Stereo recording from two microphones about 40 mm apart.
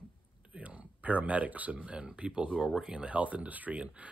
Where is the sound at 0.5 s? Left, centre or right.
Right.